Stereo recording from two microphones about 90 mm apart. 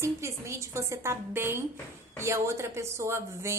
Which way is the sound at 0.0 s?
30° right (ahead or behind).